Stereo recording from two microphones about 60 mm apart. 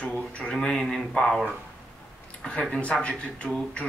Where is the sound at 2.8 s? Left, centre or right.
Centre.